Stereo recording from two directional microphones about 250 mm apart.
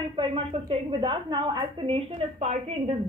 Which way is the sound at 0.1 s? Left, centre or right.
Right.